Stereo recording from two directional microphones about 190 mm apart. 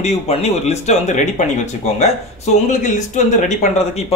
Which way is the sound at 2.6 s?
40° left (ahead or behind).